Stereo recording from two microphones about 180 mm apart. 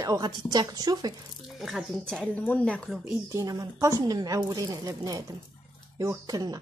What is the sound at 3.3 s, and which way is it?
A woman's voice, 20° right (ahead or behind).